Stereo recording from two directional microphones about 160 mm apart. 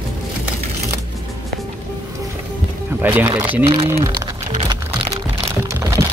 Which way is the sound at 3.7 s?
40° right (ahead or behind).